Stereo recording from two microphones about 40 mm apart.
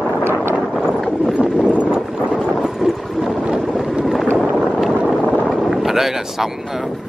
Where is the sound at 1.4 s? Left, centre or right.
Right.